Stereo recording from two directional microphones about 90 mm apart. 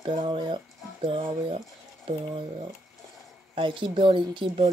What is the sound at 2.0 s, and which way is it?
Speech, 90° right.